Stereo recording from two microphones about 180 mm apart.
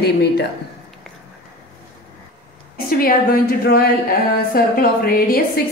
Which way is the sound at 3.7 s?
55° left (ahead or behind).